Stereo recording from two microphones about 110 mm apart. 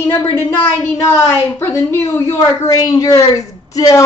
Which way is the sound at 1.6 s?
20° left (ahead or behind).